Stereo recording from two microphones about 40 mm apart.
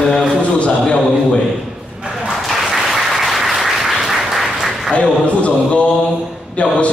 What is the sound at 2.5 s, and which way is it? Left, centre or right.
Applause, centre.